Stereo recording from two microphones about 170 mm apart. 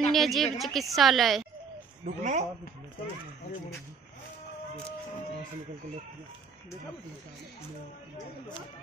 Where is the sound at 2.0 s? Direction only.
45° right (ahead or behind).